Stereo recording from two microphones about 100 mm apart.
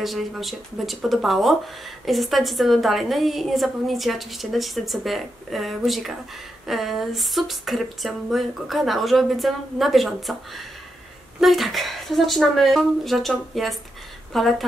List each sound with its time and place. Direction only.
0.0 s a woman's voice: centre (ahead or behind)
11.4 s a woman's voice: centre (ahead or behind)